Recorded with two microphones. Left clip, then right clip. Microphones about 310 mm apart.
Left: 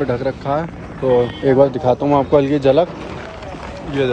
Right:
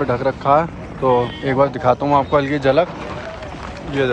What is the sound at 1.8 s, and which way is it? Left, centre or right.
Speech, right.